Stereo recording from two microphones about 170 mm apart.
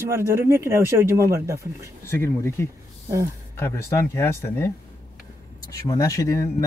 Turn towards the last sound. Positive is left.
turn(degrees=20)  # may be behind; listen again after turning